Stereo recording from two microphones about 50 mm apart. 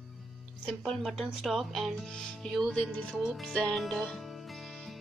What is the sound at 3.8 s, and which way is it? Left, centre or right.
Speech, centre.